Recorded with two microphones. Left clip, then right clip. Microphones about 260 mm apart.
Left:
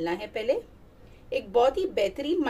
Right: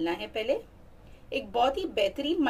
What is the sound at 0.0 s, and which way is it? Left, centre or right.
A woman's voice, right.